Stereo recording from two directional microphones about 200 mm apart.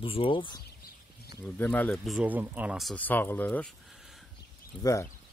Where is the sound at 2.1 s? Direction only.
10° right (ahead or behind); by 3.7 s 10° left (ahead or behind).